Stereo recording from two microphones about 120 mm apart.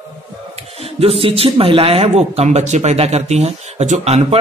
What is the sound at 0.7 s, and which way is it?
Speech, 55° right (ahead or behind).